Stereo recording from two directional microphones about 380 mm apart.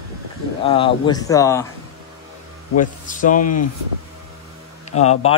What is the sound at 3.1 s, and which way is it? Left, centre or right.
Speech, left.